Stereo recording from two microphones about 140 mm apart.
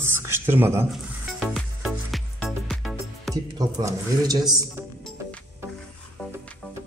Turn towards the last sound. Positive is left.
turn(degrees=5)  # may be behind; listen again after turning